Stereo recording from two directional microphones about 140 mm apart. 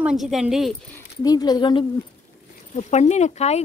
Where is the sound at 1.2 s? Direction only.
30° left (ahead or behind).